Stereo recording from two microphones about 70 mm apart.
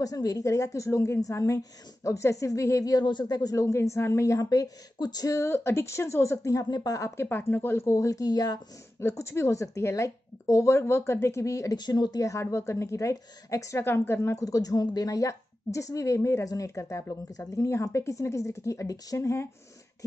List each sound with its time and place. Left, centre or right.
0.0 s a woman's voice: left
5.4 s speech: left
6.7 s speech: left
7.2 s speech: left
7.8 s speech: left
9.0 s a woman's voice: left
11.7 s speech: left
12.2 s a woman's voice: left
13.7 s speech: left
14.4 s a woman's voice: left